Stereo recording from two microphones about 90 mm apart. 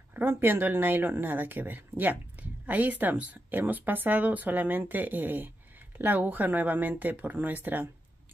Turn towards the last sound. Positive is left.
turn(degrees=-20)  # may be behind; listen again after turning